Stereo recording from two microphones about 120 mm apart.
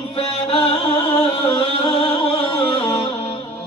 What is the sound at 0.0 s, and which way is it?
Music, 50° left (ahead or behind).